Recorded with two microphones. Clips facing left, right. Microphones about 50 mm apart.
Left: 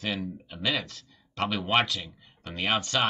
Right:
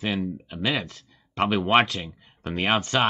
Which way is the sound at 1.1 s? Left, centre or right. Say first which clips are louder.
Right 6 dB; right.